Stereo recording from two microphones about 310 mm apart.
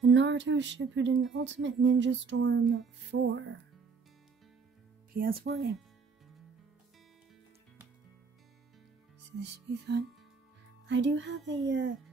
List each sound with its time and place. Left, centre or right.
0.0 s speech: right
5.1 s speech: right
9.4 s speech: right